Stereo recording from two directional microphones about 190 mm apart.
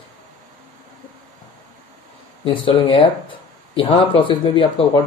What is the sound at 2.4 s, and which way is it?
A man's voice, 25° left (ahead or behind).